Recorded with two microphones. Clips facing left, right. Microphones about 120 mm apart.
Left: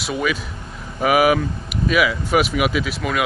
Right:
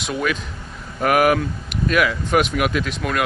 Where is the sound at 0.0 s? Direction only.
5° left (ahead or behind).